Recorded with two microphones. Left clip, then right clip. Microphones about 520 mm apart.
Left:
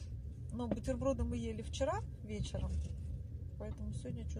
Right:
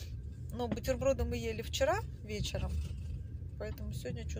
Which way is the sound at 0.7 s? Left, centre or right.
Left.